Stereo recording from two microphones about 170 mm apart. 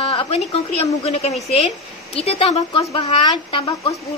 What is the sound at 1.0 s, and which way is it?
Speech, 35° left (ahead or behind).